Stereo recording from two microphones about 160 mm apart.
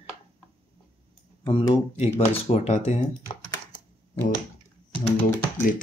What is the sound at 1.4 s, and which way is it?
Speech, 30° left (ahead or behind).